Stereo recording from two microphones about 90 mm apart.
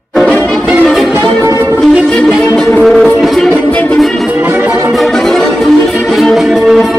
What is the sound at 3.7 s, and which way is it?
Music, 15° left (ahead or behind).